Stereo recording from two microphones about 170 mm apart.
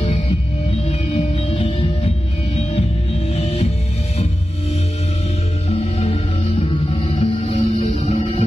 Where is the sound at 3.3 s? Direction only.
35° left (ahead or behind).